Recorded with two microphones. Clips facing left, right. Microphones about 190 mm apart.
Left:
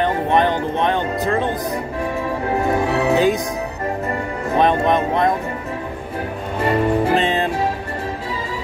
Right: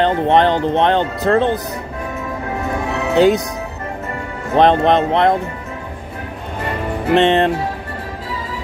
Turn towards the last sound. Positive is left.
turn(degrees=-70)  # may be behind; listen again after turning